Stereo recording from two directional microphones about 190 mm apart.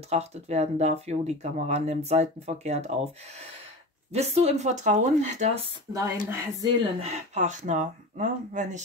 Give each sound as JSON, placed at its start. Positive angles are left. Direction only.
{"t": 0.1, "sound": "speech", "side_deg": -35}
{"t": 4.1, "sound": "speech", "side_deg": -35}
{"t": 5.9, "sound": "speech", "side_deg": -15}
{"t": 7.0, "sound": "speech", "side_deg": -35}